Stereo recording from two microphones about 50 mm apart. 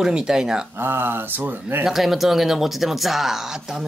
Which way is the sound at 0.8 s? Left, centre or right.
Right.